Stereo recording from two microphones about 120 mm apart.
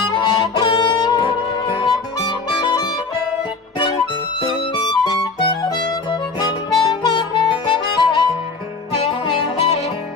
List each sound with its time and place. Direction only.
0.1 s music: 40° left (ahead or behind)
4.4 s music: 40° left (ahead or behind)
6.8 s harmonica: 40° left (ahead or behind)
9.3 s music: 60° left (ahead or behind)